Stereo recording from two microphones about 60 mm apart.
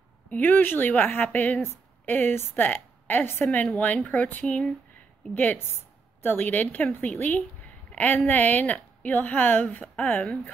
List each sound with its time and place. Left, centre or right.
0.3 s a woman's voice: left
7.9 s a sound: left
8.3 s speech: left